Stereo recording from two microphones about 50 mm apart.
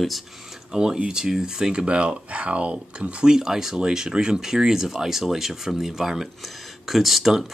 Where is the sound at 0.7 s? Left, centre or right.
Centre.